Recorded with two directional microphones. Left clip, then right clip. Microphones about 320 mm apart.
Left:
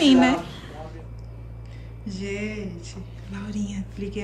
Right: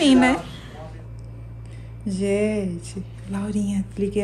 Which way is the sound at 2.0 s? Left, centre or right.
Centre.